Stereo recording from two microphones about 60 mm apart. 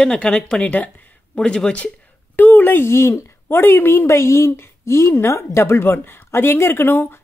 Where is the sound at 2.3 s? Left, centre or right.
Left.